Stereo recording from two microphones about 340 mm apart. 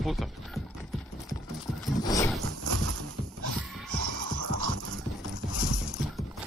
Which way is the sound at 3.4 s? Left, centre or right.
Right.